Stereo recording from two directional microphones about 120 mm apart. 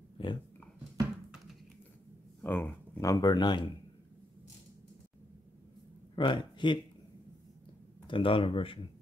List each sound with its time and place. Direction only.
0.2 s speech: 50° left (ahead or behind)
2.4 s speech: 15° left (ahead or behind); by 3.6 s 35° left (ahead or behind)
6.1 s speech: 40° left (ahead or behind)
8.1 s speech: 45° left (ahead or behind)